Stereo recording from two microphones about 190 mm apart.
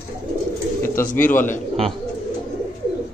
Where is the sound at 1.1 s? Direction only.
10° left (ahead or behind).